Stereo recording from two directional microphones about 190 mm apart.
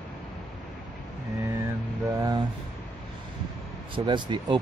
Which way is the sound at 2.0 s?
15° right (ahead or behind).